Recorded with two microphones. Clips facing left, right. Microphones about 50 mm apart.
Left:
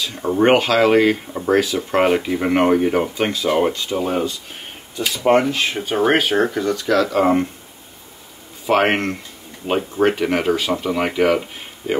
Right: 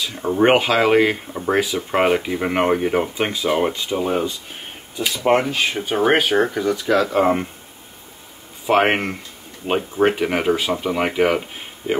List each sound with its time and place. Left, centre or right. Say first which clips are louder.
0.0 s speech: even; centre
8.6 s speech: even; centre